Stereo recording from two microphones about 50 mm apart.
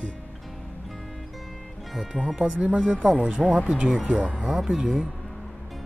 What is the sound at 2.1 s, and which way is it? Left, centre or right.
Speech, centre.